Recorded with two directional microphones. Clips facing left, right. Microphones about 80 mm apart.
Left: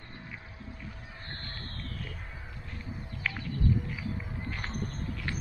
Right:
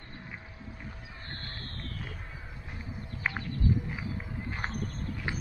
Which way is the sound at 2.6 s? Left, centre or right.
Centre.